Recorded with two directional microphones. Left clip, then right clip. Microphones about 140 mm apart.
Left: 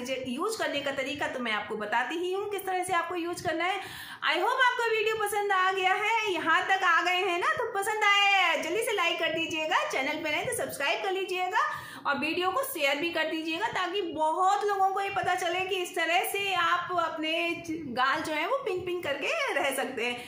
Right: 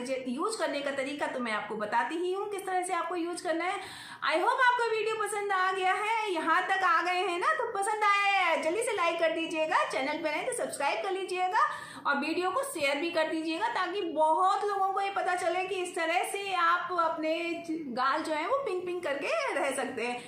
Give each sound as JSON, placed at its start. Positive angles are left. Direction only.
{"t": 1.2, "sound": "a woman's voice", "side_deg": 10}
{"t": 4.3, "sound": "a woman's voice", "side_deg": 10}